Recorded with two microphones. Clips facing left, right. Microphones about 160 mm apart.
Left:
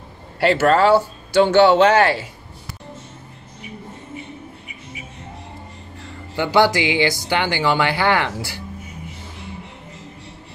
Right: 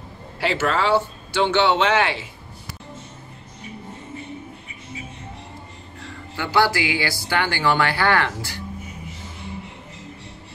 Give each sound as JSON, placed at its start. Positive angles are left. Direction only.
{"t": 0.5, "sound": "speech", "side_deg": 45}
{"t": 6.3, "sound": "speech", "side_deg": 20}